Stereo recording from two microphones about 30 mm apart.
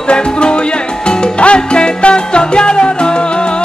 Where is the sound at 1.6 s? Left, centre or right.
Left.